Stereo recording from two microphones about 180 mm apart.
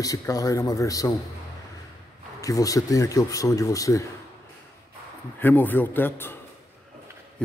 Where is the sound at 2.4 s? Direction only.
20° left (ahead or behind).